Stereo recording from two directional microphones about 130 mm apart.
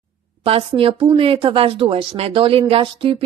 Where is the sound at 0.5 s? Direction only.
45° right (ahead or behind).